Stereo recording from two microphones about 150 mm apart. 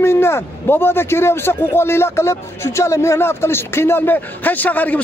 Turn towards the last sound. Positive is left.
turn(degrees=10)  # may be behind; listen again after turning